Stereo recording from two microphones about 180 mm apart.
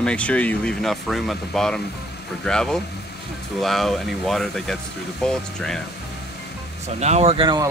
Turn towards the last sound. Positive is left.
turn(degrees=-25)  # may be behind; listen again after turning